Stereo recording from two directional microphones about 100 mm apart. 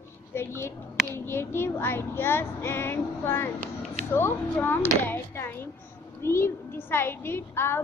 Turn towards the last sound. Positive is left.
turn(degrees=25)  # may be behind; listen again after turning